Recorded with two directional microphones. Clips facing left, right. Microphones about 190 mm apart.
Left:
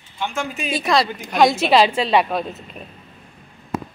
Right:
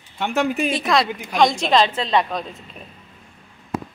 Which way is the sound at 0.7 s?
Centre (ahead or behind).